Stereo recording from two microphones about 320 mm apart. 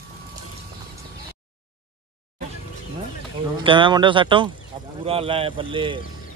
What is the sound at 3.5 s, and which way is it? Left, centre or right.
Speech, centre.